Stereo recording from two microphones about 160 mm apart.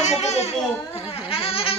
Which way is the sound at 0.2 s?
45° left (ahead or behind).